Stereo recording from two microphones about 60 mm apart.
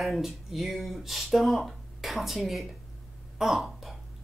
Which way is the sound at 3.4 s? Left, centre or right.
Centre.